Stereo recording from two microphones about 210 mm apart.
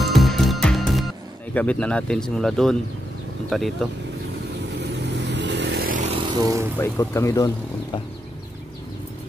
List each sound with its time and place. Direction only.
0.0 s music: centre (ahead or behind)
1.5 s speech: 5° left (ahead or behind)
4.7 s vehicle: 55° right (ahead or behind)
6.4 s speech: 15° right (ahead or behind)
6.8 s speech: 15° left (ahead or behind)